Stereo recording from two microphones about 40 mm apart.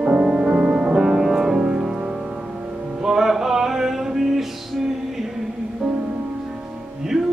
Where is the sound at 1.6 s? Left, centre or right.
Right.